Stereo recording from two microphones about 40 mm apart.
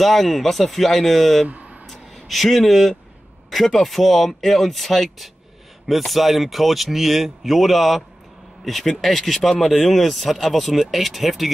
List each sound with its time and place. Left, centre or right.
0.0 s speech: centre
1.5 s a sound: right
1.9 s a man's voice: centre